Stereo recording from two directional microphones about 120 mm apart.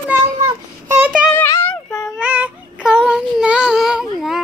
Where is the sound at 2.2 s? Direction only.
15° right (ahead or behind).